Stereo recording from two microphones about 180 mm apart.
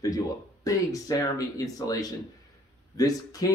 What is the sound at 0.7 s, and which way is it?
Speech, 20° left (ahead or behind).